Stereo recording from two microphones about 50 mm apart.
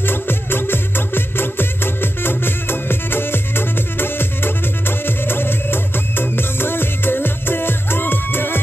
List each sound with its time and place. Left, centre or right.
0.0 s music: left